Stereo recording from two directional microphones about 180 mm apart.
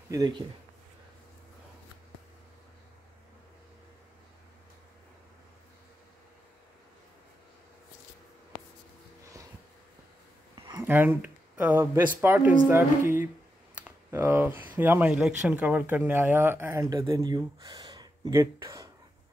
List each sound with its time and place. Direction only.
0.1 s speech: 20° right (ahead or behind)
9.2 s a sound: 20° right (ahead or behind)
10.7 s speech: 10° right (ahead or behind)
12.2 s music: 10° right (ahead or behind)
13.7 s speech: 10° right (ahead or behind)